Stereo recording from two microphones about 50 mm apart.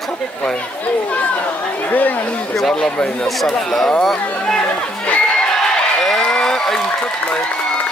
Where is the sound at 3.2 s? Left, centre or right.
Centre.